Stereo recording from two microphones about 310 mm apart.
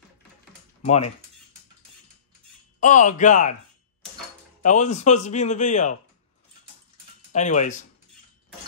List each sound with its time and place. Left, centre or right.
0.8 s speech: left
2.8 s speech: left
4.6 s speech: left
7.3 s speech: left